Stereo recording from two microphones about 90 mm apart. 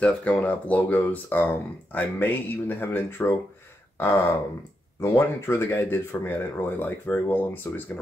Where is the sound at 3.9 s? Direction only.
30° left (ahead or behind).